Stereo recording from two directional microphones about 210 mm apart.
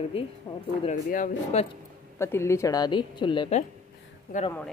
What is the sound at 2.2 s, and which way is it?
Speech, 10° left (ahead or behind).